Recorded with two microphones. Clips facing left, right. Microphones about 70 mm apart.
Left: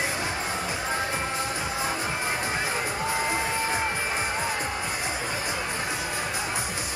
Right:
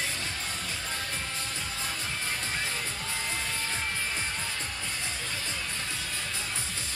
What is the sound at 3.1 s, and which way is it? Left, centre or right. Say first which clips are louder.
Music: left 9 dB; left.